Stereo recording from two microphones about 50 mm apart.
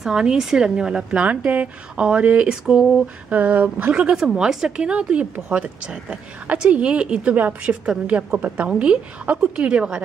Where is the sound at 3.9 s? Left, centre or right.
Centre.